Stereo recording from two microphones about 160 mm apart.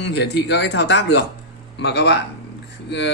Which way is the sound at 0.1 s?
90° left.